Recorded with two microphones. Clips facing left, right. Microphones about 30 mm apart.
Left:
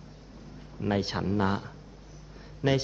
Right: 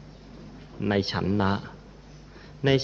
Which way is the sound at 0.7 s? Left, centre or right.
Right.